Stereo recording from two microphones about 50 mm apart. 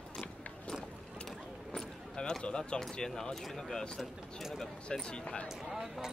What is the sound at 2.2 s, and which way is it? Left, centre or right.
A man's voice, centre.